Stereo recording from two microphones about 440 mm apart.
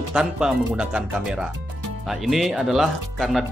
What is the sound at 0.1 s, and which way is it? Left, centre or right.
Speech, centre.